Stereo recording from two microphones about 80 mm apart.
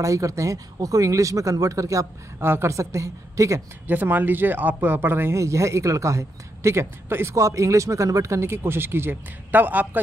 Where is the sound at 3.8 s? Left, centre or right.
Right.